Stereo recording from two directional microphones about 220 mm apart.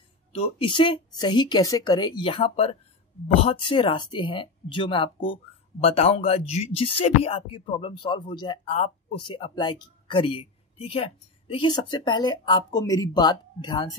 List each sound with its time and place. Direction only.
0.3 s speech: 25° left (ahead or behind)